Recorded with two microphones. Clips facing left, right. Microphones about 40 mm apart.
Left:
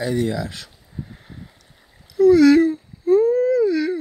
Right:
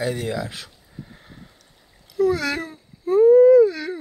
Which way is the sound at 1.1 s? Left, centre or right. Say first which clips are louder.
Left 3 dB; centre.